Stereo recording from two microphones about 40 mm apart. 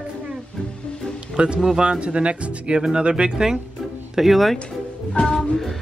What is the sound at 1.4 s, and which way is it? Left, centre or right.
Speech, right.